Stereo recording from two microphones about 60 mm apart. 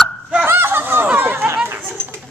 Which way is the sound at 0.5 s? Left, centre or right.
Right.